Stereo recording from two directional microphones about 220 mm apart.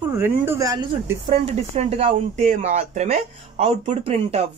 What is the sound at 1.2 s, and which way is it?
Speech, 30° right (ahead or behind).